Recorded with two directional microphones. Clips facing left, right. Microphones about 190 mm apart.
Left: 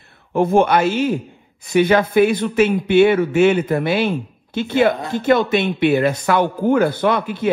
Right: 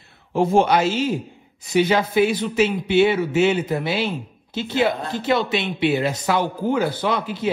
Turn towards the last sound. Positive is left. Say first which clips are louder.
# left 5 dB
turn(degrees=55)  # may be behind; listen again after turning